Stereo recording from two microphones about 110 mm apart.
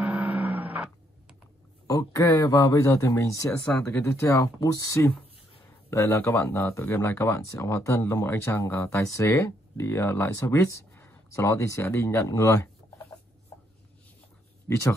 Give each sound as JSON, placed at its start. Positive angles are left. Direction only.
{"t": 0.0, "sound": "a sound", "side_deg": -10}
{"t": 1.9, "sound": "speech", "side_deg": 30}
{"t": 14.7, "sound": "speech", "side_deg": 25}